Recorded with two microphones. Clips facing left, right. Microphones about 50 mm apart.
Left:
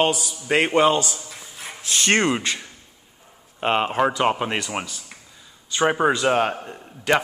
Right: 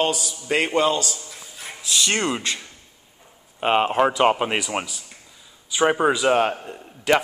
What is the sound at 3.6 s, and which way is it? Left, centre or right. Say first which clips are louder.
Speech: right 2 dB; centre.